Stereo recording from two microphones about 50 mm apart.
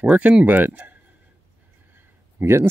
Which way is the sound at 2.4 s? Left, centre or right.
Right.